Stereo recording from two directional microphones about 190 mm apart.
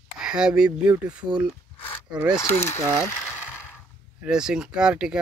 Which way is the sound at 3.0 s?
10° left (ahead or behind).